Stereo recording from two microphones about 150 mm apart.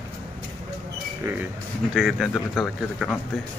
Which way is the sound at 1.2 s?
20° right (ahead or behind).